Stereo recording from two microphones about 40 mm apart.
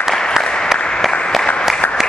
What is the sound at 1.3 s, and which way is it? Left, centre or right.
Applause, centre.